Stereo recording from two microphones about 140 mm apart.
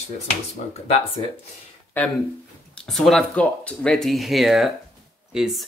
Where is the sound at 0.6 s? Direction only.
65° left (ahead or behind).